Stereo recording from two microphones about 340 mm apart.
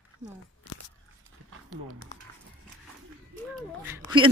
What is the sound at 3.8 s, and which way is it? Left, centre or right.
Speech, centre.